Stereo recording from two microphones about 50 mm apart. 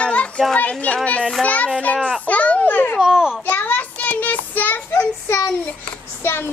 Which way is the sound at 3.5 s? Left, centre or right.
Left.